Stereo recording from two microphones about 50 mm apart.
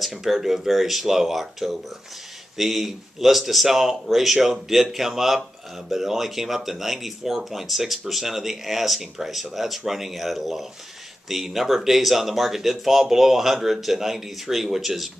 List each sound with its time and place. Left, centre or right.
0.0 s speech: centre